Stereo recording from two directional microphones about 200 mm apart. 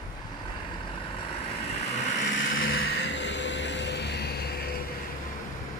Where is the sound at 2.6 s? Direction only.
50° left (ahead or behind).